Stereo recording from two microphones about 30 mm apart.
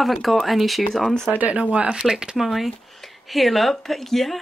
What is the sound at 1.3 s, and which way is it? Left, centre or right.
Speech, right.